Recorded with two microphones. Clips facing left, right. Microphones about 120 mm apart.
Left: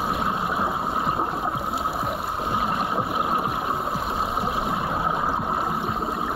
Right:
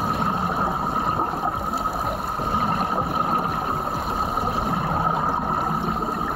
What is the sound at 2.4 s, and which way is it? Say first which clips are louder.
Boat: right 2 dB; 35° right (ahead or behind).